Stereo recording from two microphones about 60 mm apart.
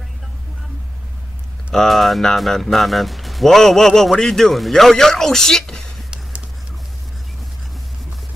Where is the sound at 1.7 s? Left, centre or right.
Centre.